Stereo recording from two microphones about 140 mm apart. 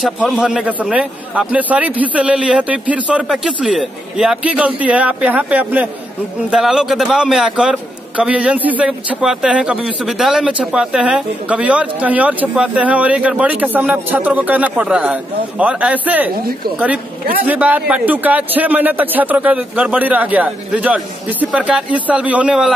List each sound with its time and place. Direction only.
0.0 s a man's voice: 5° right (ahead or behind)
17.5 s a man's voice: 10° right (ahead or behind)